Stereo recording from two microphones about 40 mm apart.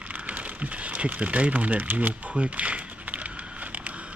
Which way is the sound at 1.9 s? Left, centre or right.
Right.